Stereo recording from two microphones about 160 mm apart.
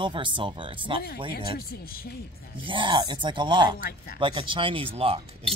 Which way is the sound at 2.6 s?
30° right (ahead or behind).